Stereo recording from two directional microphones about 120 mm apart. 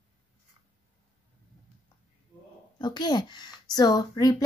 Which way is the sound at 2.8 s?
35° left (ahead or behind).